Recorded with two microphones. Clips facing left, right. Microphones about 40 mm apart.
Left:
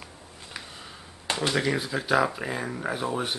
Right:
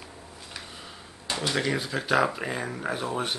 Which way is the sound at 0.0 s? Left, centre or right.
Centre.